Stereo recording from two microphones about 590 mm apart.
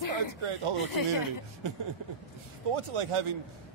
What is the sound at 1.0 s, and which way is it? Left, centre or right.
Speech, left.